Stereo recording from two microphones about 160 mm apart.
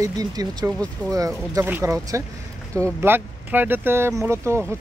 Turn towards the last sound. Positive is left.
turn(degrees=-15)  # may be behind; listen again after turning